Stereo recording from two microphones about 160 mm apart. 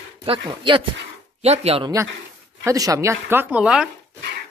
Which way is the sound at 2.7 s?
20° right (ahead or behind).